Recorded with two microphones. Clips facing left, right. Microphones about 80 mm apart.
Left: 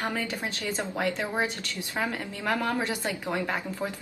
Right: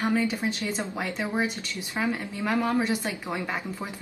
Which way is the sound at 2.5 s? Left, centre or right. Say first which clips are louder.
Right 3 dB; centre.